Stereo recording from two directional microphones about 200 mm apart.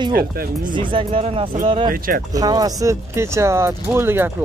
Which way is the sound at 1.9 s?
45° right (ahead or behind).